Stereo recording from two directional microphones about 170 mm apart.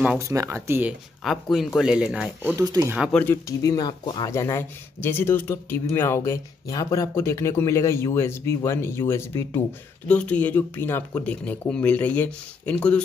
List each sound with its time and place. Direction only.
0.3 s speech: 15° right (ahead or behind)
1.2 s speech: centre (ahead or behind)
2.6 s speech: 20° right (ahead or behind)
3.1 s speech: 5° left (ahead or behind)
3.4 s speech: 20° left (ahead or behind); by 13.0 s 5° left (ahead or behind)